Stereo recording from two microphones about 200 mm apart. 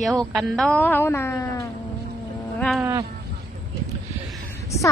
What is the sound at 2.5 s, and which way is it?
Livestock, centre (ahead or behind).